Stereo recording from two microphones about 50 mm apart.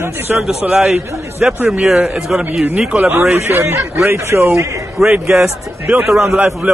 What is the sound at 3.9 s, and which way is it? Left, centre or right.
Speech, right.